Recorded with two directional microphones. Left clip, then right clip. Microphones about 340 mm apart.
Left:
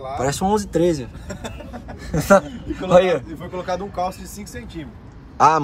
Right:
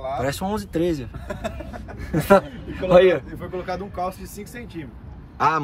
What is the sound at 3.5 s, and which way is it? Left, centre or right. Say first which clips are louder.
Speech: left 4 dB; centre.